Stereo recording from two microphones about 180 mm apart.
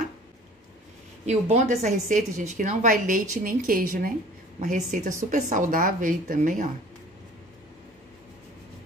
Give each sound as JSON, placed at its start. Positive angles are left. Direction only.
{"t": 1.2, "sound": "a woman's voice", "side_deg": -40}